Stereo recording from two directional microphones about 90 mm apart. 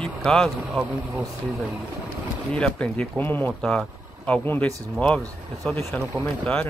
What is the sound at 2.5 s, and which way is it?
Speech, 15° left (ahead or behind).